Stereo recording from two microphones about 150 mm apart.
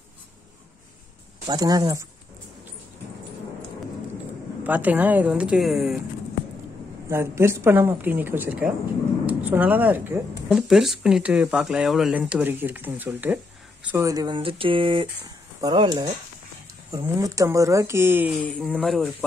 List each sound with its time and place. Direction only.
1.5 s speech: 25° right (ahead or behind)
4.6 s speech: 10° right (ahead or behind)
7.1 s speech: 15° right (ahead or behind)
10.5 s speech: centre (ahead or behind); by 16.1 s 30° right (ahead or behind)
16.9 s speech: 20° right (ahead or behind)
18.6 s speech: centre (ahead or behind)